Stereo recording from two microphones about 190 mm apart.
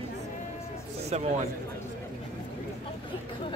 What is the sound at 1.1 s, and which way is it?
Speech, 35° right (ahead or behind).